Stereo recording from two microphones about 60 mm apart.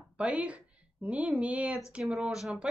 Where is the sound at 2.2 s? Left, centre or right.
Centre.